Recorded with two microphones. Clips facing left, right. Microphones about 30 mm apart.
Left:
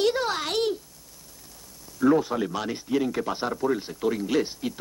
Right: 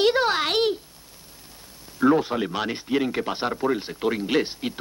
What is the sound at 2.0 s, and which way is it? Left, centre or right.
Speech, right.